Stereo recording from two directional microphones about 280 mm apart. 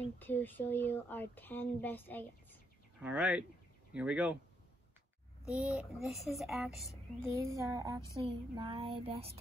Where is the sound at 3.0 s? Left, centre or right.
Centre.